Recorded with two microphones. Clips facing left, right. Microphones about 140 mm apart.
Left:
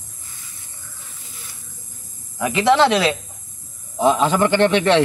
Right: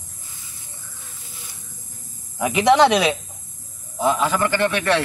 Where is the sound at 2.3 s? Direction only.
20° right (ahead or behind).